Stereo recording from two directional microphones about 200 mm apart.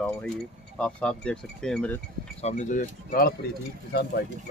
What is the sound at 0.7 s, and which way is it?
Speech, 5° left (ahead or behind).